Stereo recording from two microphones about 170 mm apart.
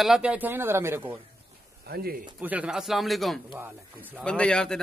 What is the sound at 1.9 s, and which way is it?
Speech, 65° right (ahead or behind).